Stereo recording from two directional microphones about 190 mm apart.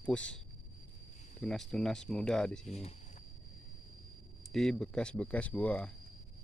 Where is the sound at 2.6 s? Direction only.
35° left (ahead or behind).